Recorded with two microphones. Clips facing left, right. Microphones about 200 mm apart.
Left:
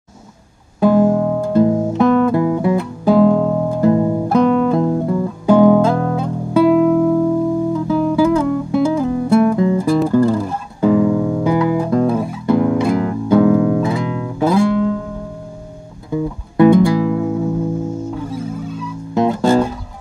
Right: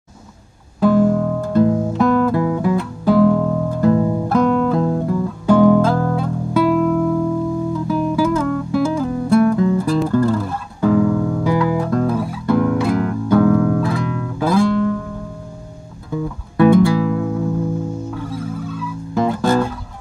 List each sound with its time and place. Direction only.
0.7 s music: 15° left (ahead or behind)
16.1 s music: 20° left (ahead or behind)
19.1 s music: 20° left (ahead or behind)